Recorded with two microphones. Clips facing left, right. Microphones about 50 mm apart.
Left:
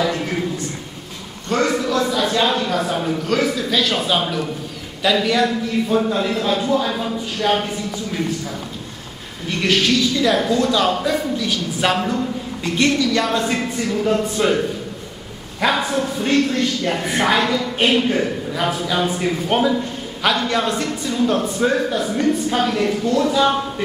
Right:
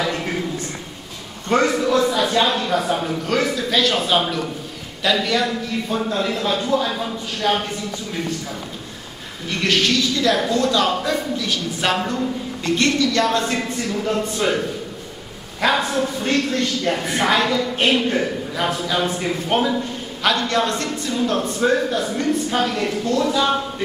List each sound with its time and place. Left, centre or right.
1.5 s a man's voice: right
2.0 s speech: centre
9.6 s a woman's voice: centre
15.8 s a woman's voice: centre